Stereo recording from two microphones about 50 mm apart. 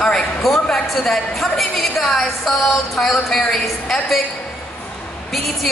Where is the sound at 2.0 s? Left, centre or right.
Centre.